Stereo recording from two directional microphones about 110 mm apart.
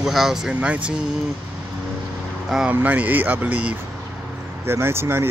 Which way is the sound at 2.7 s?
15° right (ahead or behind).